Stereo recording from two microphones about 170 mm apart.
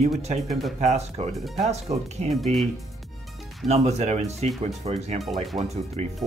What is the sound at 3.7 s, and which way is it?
Speech, 40° right (ahead or behind).